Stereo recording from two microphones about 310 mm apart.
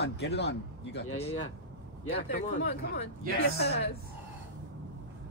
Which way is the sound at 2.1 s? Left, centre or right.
Left.